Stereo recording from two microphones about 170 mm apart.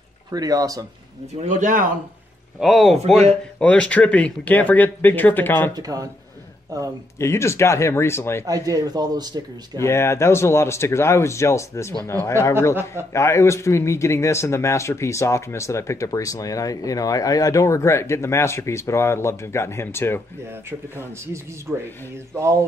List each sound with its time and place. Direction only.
0.3 s speech: 20° right (ahead or behind)
1.4 s speech: 45° right (ahead or behind)
2.6 s speech: centre (ahead or behind)
5.8 s speech: 20° right (ahead or behind)
7.2 s speech: 15° left (ahead or behind)
8.5 s speech: 20° right (ahead or behind)
9.8 s speech: 15° left (ahead or behind)
20.9 s a man's voice: 15° right (ahead or behind)